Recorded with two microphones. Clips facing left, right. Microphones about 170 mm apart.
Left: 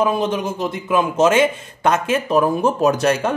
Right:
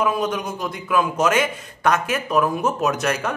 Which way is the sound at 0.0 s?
25° left (ahead or behind).